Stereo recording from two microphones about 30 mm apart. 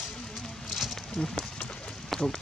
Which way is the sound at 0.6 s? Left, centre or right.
Centre.